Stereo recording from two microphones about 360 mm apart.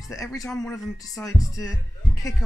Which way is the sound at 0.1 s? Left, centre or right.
Centre.